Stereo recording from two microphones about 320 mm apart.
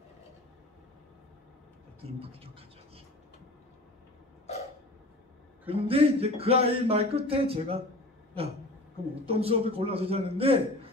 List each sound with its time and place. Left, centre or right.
2.0 s speech: centre
5.7 s speech: centre
9.2 s speech: centre